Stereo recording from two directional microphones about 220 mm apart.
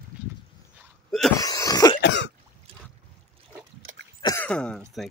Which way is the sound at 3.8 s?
45° right (ahead or behind).